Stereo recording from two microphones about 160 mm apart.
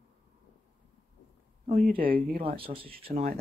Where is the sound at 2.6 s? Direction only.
35° right (ahead or behind).